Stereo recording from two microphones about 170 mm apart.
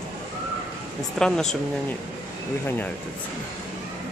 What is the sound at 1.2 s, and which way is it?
Speech, 5° left (ahead or behind).